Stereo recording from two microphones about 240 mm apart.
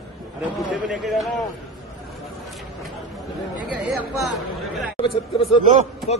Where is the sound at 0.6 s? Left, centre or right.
Centre.